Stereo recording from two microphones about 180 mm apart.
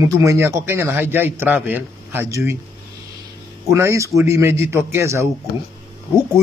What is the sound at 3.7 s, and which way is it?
A man's voice, 15° right (ahead or behind).